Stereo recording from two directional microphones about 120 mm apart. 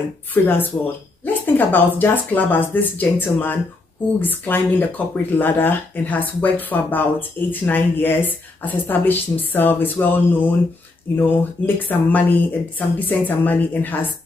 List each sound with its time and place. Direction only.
0.3 s speech: 15° left (ahead or behind)